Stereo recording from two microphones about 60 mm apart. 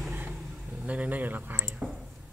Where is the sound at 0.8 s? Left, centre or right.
Right.